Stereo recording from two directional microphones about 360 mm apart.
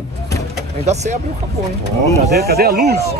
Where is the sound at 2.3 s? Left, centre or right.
Right.